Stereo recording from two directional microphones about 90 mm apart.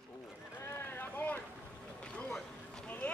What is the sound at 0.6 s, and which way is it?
Boat, 25° left (ahead or behind).